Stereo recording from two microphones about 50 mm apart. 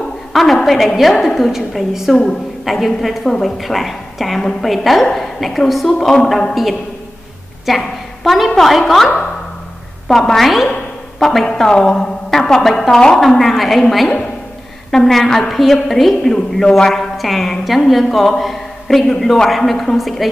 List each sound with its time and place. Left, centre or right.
0.3 s a woman's voice: centre